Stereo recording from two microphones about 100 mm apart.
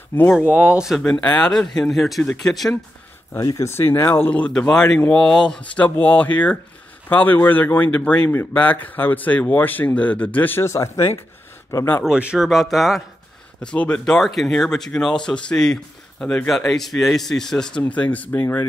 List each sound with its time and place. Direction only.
0.4 s speech: 15° right (ahead or behind)
1.0 s speech: 10° left (ahead or behind)
3.3 s speech: 35° left (ahead or behind); by 4.5 s 20° left (ahead or behind)
4.5 s speech: 5° left (ahead or behind); by 12.0 s 25° left (ahead or behind)
12.0 s speech: 10° right (ahead or behind)
13.6 s speech: 10° left (ahead or behind)